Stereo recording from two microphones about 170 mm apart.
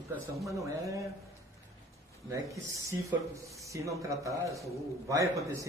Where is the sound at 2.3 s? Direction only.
20° right (ahead or behind).